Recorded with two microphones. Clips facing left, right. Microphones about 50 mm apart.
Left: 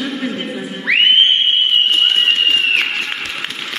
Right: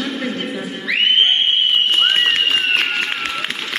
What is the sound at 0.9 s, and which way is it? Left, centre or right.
Music, left.